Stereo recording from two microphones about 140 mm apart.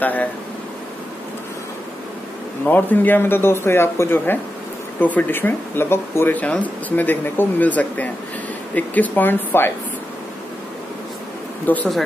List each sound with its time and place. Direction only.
0.0 s speech: 10° left (ahead or behind)
2.6 s speech: 10° left (ahead or behind)
11.7 s speech: 15° left (ahead or behind)